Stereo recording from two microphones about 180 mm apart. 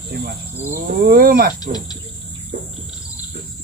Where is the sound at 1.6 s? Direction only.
20° left (ahead or behind).